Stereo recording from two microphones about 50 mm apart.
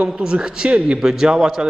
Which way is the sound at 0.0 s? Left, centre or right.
Centre.